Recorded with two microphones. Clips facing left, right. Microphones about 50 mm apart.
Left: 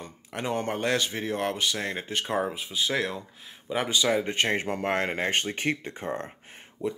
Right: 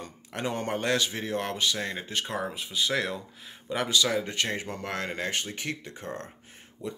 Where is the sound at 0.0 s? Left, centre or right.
Centre.